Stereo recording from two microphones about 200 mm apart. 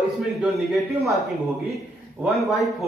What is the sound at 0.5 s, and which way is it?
A man's voice, centre (ahead or behind).